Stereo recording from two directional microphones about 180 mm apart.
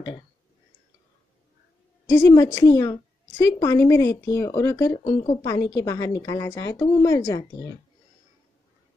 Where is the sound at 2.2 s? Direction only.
20° left (ahead or behind).